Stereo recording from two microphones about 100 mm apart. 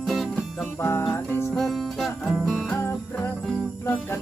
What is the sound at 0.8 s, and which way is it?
Music, 25° left (ahead or behind).